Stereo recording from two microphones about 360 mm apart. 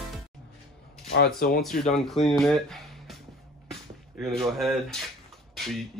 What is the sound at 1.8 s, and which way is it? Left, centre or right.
Speech, centre.